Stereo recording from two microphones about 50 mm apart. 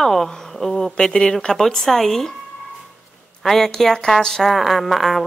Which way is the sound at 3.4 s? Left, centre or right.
Centre.